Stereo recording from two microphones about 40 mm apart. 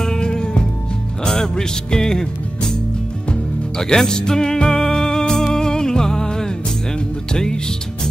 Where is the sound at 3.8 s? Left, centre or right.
Centre.